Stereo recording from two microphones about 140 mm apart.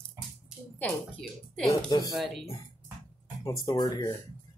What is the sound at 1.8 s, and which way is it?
Speech, 25° left (ahead or behind).